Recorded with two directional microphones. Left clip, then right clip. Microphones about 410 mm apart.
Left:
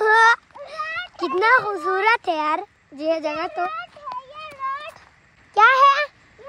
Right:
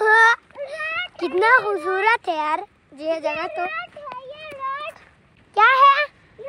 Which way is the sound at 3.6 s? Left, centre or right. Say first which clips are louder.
Even; centre.